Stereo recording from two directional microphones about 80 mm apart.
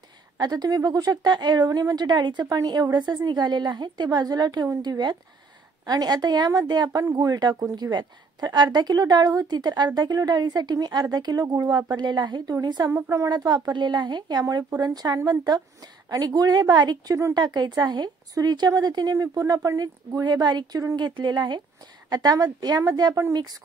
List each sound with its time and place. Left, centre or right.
0.4 s speech: right
11.7 s speech: right
12.9 s a woman's voice: right
13.3 s speech: right
14.4 s a woman's voice: right
14.8 s speech: right
17.1 s a woman's voice: right
17.4 s speech: right
22.1 s speech: right